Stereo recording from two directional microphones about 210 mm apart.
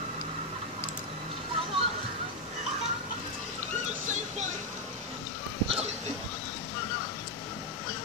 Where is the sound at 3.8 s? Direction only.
35° right (ahead or behind).